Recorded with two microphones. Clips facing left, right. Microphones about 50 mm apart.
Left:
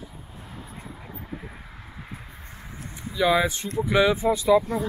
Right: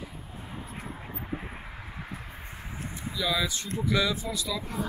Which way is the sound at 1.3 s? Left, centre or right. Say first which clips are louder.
Right 2 dB; right.